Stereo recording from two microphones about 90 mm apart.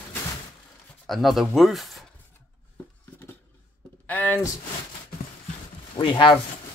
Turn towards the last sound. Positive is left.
turn(degrees=65)  # may be behind; listen again after turning